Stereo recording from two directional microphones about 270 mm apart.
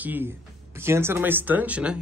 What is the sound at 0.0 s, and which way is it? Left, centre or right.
A man's voice, centre.